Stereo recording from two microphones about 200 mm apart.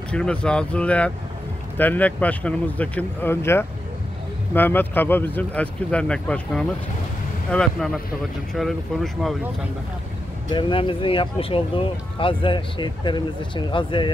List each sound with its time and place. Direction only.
0.1 s speech: 5° left (ahead or behind)
10.5 s speech: 25° left (ahead or behind)